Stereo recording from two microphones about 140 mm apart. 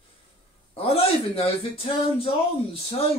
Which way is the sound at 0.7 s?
45° left (ahead or behind).